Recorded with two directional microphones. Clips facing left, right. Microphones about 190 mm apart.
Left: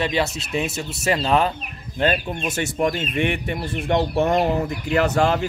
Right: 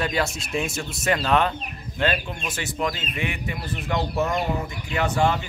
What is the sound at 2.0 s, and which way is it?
Speech, 40° left (ahead or behind).